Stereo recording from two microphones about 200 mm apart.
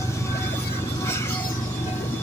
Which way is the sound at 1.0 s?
15° left (ahead or behind).